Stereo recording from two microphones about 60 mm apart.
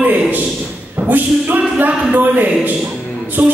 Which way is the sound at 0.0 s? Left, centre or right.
Right.